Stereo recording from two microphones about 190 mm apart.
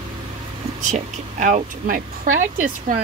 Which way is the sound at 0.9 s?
40° right (ahead or behind).